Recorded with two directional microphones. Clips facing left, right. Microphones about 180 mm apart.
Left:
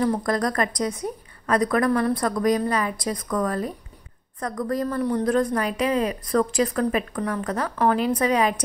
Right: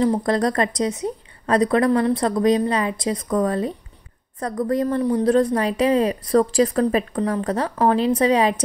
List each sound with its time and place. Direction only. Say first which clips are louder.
0.0 s a woman's voice: right 4 dB; 25° right (ahead or behind)